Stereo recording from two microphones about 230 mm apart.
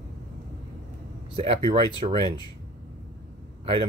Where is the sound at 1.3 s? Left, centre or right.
Right.